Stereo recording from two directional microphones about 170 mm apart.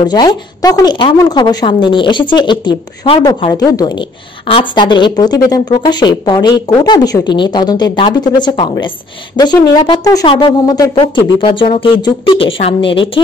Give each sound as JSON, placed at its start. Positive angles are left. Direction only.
{"t": 0.0, "sound": "speech", "side_deg": 25}